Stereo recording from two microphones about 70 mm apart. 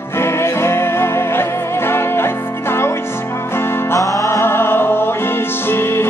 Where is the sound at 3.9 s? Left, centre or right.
Left.